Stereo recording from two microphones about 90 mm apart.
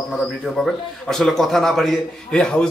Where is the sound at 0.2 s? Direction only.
5° left (ahead or behind).